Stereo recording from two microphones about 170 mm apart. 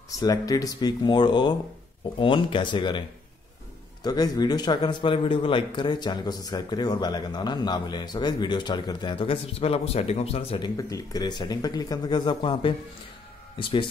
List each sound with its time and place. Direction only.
0.2 s a man's voice: 20° left (ahead or behind)
4.0 s a man's voice: 25° left (ahead or behind)
10.8 s a man's voice: 20° left (ahead or behind)